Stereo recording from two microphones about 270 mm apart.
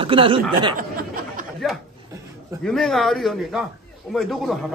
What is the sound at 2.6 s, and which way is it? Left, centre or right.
A man's voice, centre.